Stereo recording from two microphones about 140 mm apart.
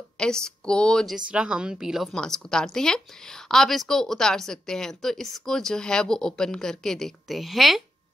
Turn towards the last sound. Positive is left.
turn(degrees=0)  # may be behind; listen again after turning